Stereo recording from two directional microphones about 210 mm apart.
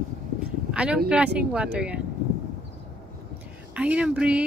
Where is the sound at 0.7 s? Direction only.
5° right (ahead or behind).